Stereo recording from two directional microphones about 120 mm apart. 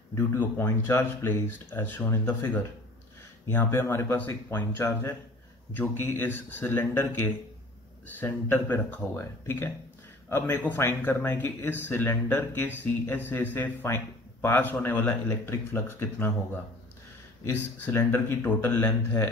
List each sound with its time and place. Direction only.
0.1 s speech: 25° left (ahead or behind)
17.9 s speech: 15° left (ahead or behind)